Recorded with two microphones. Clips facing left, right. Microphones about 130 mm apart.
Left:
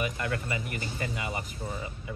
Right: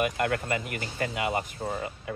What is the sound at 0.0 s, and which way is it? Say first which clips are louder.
Speech: right 5 dB; 55° right (ahead or behind).